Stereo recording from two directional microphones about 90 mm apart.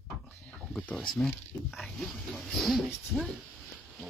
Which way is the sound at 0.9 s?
Centre (ahead or behind).